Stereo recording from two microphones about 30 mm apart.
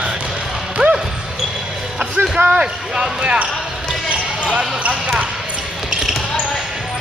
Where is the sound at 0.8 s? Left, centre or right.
Right.